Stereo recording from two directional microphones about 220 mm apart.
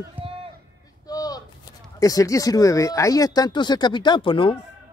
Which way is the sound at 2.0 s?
15° left (ahead or behind).